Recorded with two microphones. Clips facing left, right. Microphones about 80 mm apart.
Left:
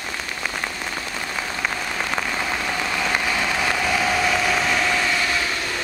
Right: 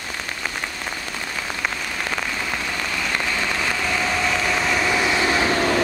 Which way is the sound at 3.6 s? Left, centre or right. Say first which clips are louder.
Left 2 dB; centre.